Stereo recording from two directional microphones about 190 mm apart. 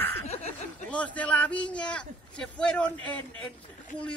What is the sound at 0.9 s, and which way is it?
A man's voice, 5° left (ahead or behind).